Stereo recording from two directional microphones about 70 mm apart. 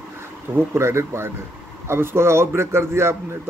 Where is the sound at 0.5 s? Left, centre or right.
Right.